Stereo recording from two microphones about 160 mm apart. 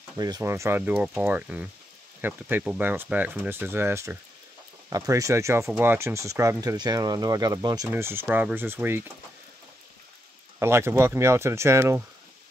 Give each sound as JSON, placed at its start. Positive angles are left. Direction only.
{"t": 0.1, "sound": "speech", "side_deg": -20}
{"t": 10.6, "sound": "speech", "side_deg": -15}